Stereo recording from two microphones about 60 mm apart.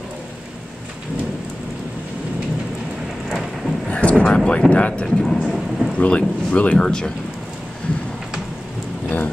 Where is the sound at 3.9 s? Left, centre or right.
Left.